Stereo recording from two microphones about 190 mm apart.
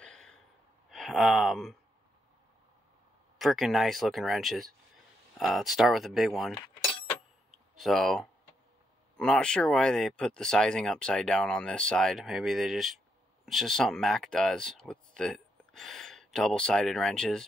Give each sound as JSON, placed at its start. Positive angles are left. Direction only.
{"t": 0.0, "sound": "gasp", "side_deg": 5}
{"t": 0.8, "sound": "speech", "side_deg": 0}
{"t": 3.3, "sound": "speech", "side_deg": 0}
{"t": 7.5, "sound": "a sound", "side_deg": 0}
{"t": 9.1, "sound": "speech", "side_deg": 5}